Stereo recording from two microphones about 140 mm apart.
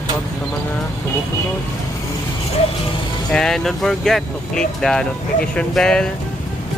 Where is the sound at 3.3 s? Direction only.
5° left (ahead or behind).